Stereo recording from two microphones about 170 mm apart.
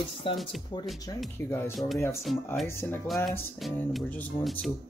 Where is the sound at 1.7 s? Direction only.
Centre (ahead or behind).